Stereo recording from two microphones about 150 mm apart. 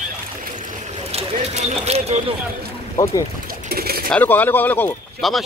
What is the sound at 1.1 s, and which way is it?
Speech, 45° right (ahead or behind).